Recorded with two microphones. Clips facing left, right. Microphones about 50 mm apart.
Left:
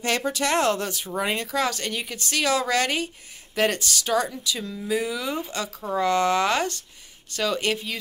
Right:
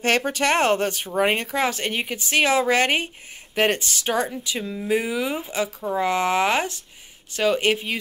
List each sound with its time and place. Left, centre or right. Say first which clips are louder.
0.0 s speech: right 4 dB; right